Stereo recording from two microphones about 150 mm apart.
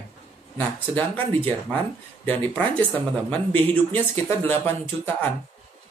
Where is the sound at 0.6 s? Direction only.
10° left (ahead or behind).